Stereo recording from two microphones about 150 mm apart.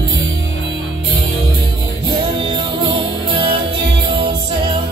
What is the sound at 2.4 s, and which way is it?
Music, 35° right (ahead or behind).